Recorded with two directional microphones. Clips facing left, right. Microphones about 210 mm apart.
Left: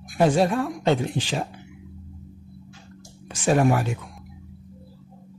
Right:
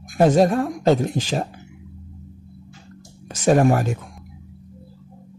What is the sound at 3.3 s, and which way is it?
Speech, 40° right (ahead or behind).